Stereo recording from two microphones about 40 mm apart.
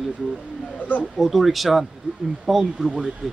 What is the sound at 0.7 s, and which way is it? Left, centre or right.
Speech, left.